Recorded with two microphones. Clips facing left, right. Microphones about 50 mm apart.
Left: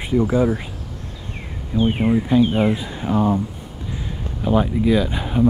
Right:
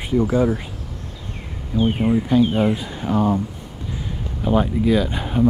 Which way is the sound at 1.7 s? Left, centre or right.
Centre.